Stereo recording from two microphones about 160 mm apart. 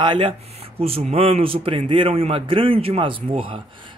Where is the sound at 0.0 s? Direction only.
30° right (ahead or behind).